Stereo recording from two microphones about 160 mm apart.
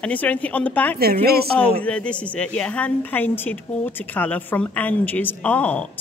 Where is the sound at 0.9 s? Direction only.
75° right (ahead or behind).